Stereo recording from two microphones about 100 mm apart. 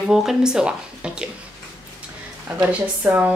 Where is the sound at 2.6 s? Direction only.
20° right (ahead or behind).